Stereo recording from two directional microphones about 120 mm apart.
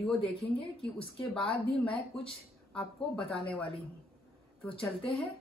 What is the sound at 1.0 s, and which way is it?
Speech, 50° left (ahead or behind).